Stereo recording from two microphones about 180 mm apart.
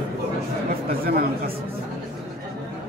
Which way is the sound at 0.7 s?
55° right (ahead or behind).